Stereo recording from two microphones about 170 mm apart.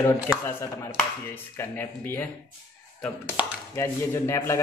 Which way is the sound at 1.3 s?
10° left (ahead or behind).